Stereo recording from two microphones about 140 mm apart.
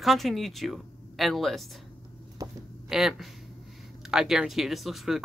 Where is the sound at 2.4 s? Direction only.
25° right (ahead or behind).